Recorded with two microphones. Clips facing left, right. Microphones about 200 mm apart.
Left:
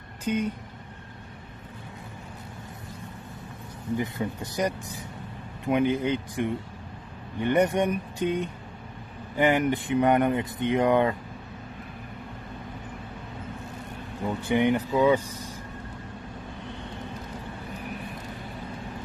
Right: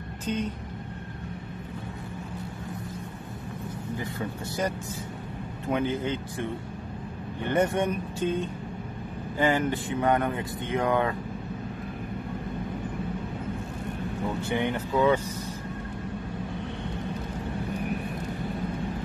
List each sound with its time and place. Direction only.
0.2 s speech: 10° left (ahead or behind)
4.2 s speech: 15° left (ahead or behind)
5.7 s speech: 15° left (ahead or behind)
14.4 s speech: 15° left (ahead or behind)